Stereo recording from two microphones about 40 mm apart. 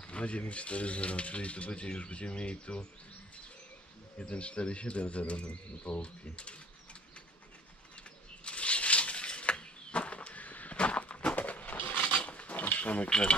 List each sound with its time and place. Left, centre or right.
0.0 s speech: left
4.2 s speech: left
8.5 s a sound: left